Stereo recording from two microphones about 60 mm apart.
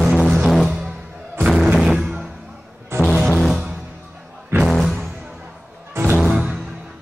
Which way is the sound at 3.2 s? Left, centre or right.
Centre.